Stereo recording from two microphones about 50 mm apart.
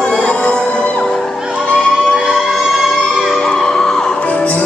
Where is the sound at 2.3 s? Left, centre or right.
Centre.